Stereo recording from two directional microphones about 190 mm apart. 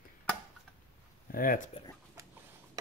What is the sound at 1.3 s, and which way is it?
Speech, 45° left (ahead or behind).